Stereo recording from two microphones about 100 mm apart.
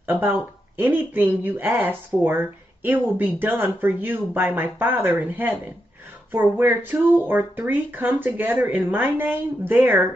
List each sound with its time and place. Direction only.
0.0 s speech: 20° right (ahead or behind)